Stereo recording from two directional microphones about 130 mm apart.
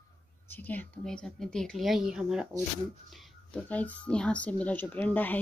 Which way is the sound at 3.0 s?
Centre (ahead or behind).